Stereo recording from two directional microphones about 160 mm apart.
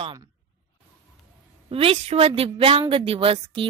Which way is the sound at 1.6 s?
35° right (ahead or behind).